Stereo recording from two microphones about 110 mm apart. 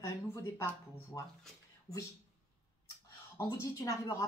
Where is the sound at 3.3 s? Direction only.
30° left (ahead or behind).